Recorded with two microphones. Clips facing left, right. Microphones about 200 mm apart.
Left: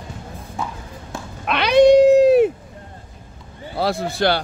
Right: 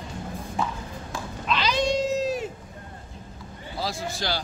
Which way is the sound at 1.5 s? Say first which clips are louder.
Left 13 dB; 65° left (ahead or behind).